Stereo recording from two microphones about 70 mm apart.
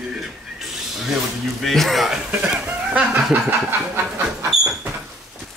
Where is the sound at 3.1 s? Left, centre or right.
Right.